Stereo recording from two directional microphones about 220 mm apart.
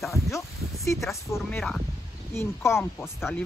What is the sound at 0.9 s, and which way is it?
Speech, centre (ahead or behind).